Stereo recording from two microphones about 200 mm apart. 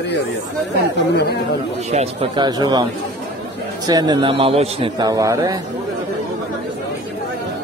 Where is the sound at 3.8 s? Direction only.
20° right (ahead or behind).